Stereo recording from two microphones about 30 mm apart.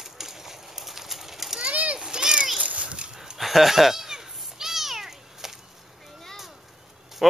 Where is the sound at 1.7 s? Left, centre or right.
Right.